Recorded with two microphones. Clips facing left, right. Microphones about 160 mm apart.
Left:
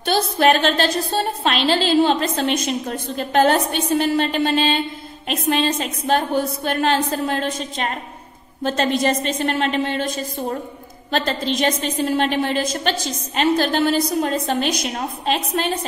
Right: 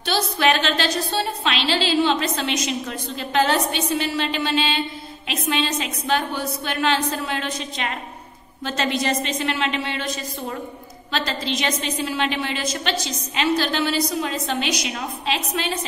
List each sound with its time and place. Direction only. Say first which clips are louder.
0.0 s a woman's voice: left 4 dB; 50° left (ahead or behind)